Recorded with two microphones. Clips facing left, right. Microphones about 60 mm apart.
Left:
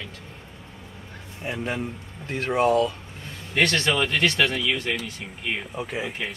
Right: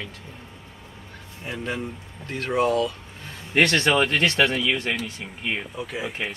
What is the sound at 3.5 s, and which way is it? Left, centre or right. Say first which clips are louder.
Speech: right 3 dB; right.